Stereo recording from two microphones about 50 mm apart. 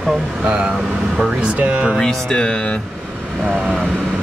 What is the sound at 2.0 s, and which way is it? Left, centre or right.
Speech, centre.